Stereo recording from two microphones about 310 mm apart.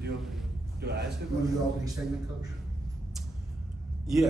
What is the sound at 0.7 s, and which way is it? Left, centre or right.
Speech, right.